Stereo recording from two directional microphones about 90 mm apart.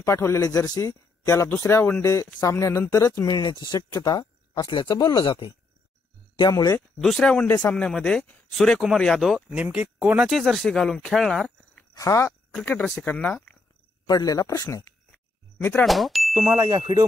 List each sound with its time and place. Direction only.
0.0 s a man's voice: 30° left (ahead or behind)
2.0 s a man's voice: 35° left (ahead or behind); by 5.5 s 60° left (ahead or behind)
6.5 s a man's voice: 40° left (ahead or behind)
7.0 s a man's voice: 5° left (ahead or behind)
9.6 s speech: 15° right (ahead or behind)
10.2 s speech: centre (ahead or behind)
12.0 s a man's voice: 35° left (ahead or behind)
13.0 s speech: 20° left (ahead or behind)
14.0 s speech: 45° left (ahead or behind)
15.8 s speech: centre (ahead or behind)
16.3 s ding: 40° right (ahead or behind)